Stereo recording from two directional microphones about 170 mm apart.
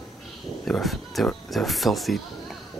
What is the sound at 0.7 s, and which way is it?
Speech, centre (ahead or behind).